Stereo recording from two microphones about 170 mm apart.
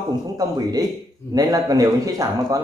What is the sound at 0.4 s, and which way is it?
A man's voice, 20° right (ahead or behind).